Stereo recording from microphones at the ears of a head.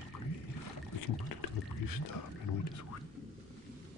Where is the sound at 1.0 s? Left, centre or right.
Left.